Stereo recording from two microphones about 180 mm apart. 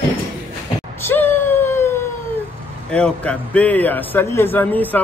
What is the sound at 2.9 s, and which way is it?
A man's voice, 5° left (ahead or behind).